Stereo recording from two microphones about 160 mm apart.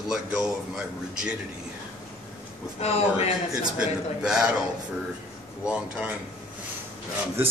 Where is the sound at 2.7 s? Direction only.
40° left (ahead or behind).